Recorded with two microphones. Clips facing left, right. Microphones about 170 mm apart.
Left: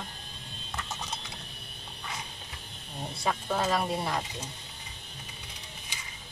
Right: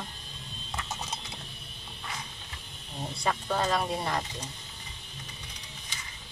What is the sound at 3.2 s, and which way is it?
Speech, 5° left (ahead or behind).